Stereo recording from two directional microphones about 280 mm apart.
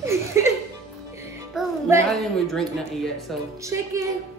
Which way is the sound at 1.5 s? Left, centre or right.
Centre.